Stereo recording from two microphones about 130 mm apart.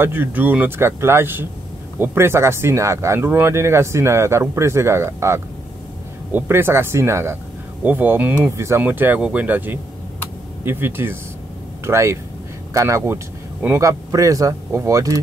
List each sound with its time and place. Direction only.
0.0 s speech: 15° right (ahead or behind)